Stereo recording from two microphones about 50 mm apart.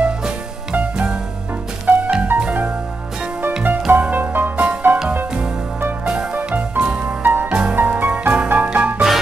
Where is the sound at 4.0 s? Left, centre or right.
Right.